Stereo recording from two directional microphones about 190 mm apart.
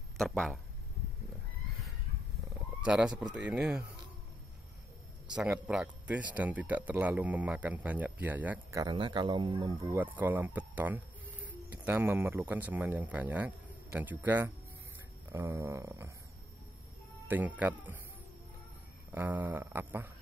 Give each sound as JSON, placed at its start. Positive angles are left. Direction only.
{"t": 0.2, "sound": "speech", "side_deg": 0}
{"t": 2.8, "sound": "speech", "side_deg": -5}
{"t": 5.3, "sound": "speech", "side_deg": -5}
{"t": 8.8, "sound": "speech", "side_deg": -25}
{"t": 9.9, "sound": "speech", "side_deg": -10}
{"t": 17.3, "sound": "speech", "side_deg": -10}
{"t": 19.1, "sound": "speech", "side_deg": -10}